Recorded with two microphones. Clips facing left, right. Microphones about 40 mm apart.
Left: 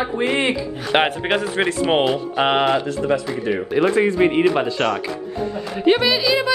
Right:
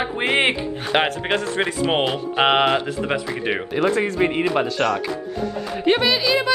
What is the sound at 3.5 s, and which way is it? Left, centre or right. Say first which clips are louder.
Speech: left 2 dB; right.